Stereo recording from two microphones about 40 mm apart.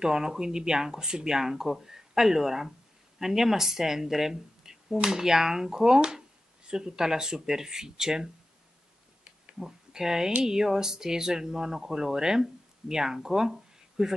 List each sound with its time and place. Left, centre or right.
0.0 s speech: centre
9.6 s speech: centre